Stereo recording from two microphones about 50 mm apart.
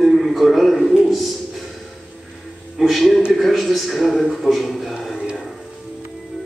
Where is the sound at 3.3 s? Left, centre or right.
Centre.